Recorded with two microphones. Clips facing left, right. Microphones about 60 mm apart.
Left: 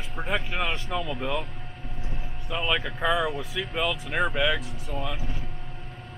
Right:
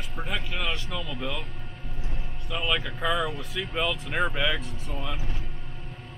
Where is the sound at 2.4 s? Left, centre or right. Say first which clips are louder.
Left 1 dB; centre.